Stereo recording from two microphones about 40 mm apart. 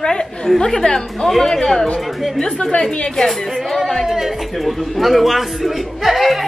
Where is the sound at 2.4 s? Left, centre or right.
Centre.